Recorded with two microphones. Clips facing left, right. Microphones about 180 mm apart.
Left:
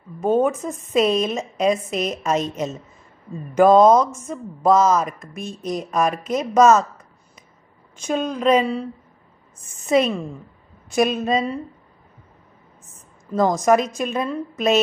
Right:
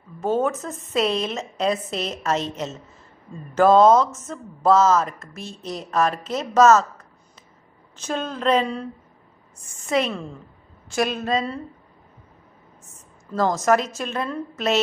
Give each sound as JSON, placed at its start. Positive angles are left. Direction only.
{"t": 0.2, "sound": "speech", "side_deg": 15}
{"t": 8.0, "sound": "speech", "side_deg": 15}
{"t": 9.6, "sound": "a woman's voice", "side_deg": 20}
{"t": 13.3, "sound": "speech", "side_deg": 15}